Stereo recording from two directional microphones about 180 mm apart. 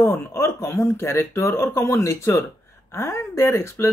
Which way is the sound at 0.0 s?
15° left (ahead or behind).